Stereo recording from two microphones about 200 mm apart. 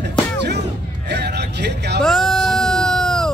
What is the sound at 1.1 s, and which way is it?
Vehicle, 55° right (ahead or behind).